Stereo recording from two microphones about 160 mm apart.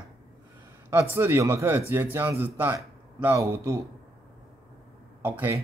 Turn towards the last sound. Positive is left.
turn(degrees=-10)  # may be behind; listen again after turning